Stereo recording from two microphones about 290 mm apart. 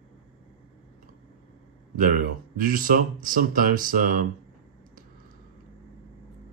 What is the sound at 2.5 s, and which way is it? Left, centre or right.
Speech, right.